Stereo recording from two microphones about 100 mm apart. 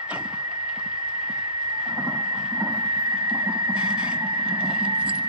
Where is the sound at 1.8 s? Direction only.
15° right (ahead or behind).